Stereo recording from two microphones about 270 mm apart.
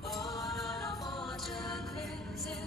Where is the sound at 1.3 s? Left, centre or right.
Centre.